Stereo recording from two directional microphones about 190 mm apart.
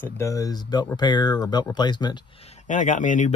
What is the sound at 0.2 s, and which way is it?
Speech, 20° left (ahead or behind).